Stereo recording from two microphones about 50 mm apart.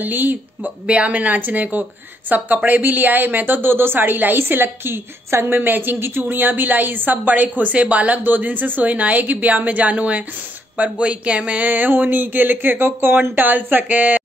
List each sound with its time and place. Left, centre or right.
0.0 s speech: right
0.8 s speech: right